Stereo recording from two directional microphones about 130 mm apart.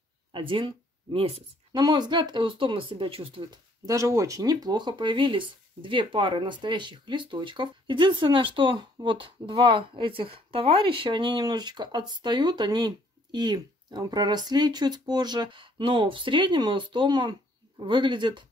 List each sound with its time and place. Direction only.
0.3 s speech: 40° right (ahead or behind)
1.7 s speech: 35° right (ahead or behind)